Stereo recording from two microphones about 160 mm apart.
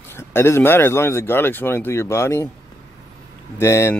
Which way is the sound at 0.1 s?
15° left (ahead or behind).